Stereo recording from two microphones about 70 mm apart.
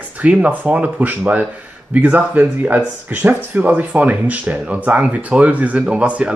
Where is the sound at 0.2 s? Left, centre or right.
Centre.